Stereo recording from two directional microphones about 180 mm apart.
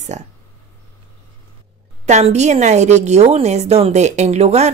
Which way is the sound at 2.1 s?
40° right (ahead or behind).